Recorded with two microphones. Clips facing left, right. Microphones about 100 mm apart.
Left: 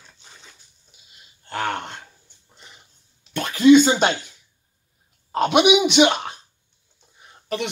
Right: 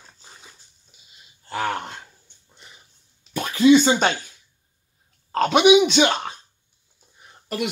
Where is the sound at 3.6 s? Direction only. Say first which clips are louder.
Left 2 dB; 5° right (ahead or behind).